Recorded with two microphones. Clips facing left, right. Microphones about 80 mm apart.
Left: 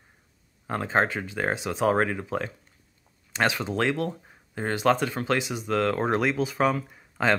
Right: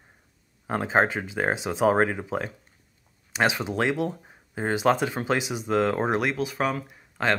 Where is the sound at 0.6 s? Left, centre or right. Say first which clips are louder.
Right 2 dB; centre.